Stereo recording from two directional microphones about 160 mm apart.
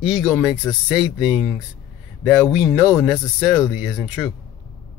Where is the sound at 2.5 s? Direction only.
5° right (ahead or behind).